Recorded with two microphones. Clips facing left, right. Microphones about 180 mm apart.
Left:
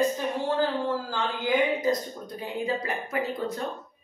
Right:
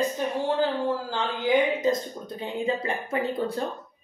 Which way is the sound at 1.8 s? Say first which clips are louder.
Right 1 dB; 25° right (ahead or behind).